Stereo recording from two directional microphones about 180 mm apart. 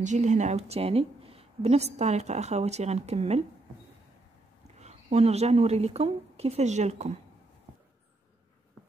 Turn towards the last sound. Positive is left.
turn(degrees=-35)  # may be behind; listen again after turning